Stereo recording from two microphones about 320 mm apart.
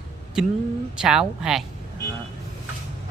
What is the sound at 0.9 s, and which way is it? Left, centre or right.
Speech, centre.